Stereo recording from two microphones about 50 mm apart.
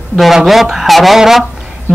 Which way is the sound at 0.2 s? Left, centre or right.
Centre.